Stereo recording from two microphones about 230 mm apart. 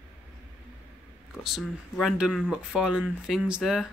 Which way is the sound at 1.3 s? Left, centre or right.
Centre.